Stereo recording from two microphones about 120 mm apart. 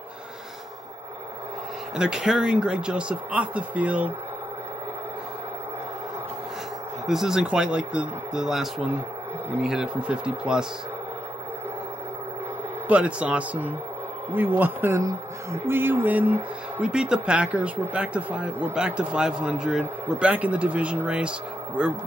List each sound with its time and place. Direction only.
2.0 s speech: 5° right (ahead or behind)
7.1 s speech: 5° right (ahead or behind)
12.8 s speech: 10° right (ahead or behind)